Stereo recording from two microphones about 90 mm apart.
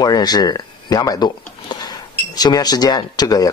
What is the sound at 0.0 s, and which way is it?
Speech, 50° left (ahead or behind).